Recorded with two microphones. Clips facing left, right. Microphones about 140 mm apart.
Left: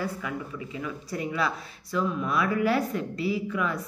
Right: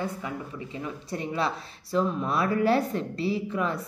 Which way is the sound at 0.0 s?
30° right (ahead or behind).